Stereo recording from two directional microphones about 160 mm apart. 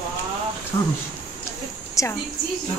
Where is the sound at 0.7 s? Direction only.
15° left (ahead or behind).